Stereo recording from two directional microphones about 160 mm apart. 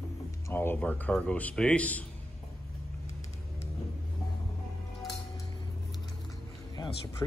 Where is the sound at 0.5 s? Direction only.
15° left (ahead or behind).